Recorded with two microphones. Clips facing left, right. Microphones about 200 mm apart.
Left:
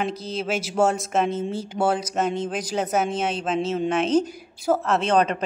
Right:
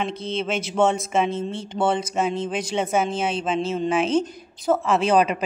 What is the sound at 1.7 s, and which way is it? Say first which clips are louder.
A woman's voice: right 1 dB; 5° left (ahead or behind).